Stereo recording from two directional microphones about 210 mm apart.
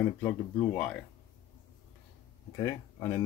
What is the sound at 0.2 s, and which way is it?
Speech, 5° left (ahead or behind).